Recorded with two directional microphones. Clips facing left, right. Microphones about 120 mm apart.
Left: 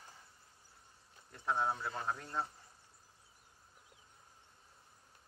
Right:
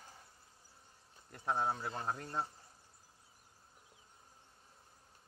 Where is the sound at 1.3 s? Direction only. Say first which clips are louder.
Even; 40° right (ahead or behind).